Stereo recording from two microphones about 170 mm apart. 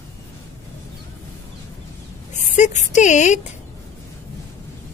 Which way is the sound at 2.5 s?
45° left (ahead or behind).